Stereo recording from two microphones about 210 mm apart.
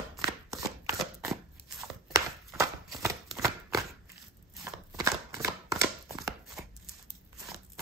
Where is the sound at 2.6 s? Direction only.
15° right (ahead or behind).